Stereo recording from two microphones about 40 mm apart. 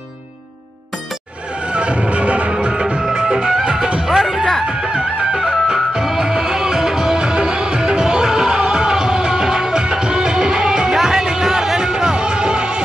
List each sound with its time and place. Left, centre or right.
1.7 s music: right
2.5 s music: centre